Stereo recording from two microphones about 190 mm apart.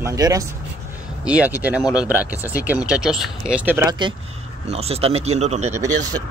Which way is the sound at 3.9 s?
25° right (ahead or behind).